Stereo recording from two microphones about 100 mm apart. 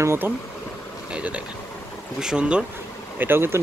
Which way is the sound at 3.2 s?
25° right (ahead or behind).